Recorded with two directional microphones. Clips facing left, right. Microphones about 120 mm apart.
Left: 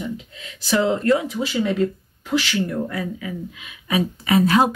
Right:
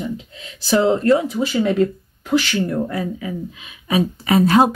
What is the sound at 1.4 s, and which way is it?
Speech, 45° right (ahead or behind).